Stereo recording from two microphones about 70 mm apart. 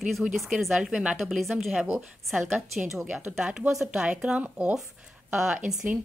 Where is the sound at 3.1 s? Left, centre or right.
Centre.